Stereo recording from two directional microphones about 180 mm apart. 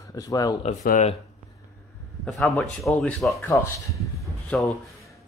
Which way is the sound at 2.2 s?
5° left (ahead or behind).